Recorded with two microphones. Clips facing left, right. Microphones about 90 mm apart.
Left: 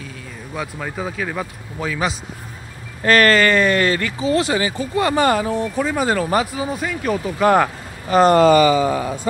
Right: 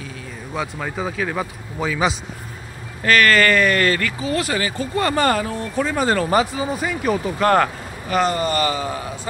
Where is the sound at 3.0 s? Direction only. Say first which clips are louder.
Left 1 dB; 35° left (ahead or behind); by 7.3 s 5° right (ahead or behind).